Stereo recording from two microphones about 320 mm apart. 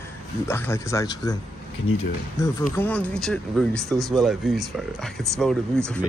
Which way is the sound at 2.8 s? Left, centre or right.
Centre.